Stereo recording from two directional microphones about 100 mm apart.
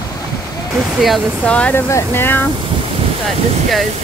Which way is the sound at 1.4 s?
10° left (ahead or behind).